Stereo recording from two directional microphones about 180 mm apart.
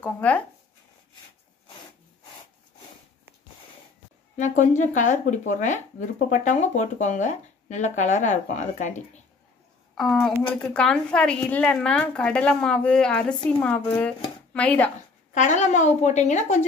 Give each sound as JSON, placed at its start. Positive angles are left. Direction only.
{"t": 0.0, "sound": "speech", "side_deg": 10}
{"t": 4.4, "sound": "speech", "side_deg": 45}
{"t": 9.9, "sound": "a woman's voice", "side_deg": 0}
{"t": 15.3, "sound": "a woman's voice", "side_deg": 40}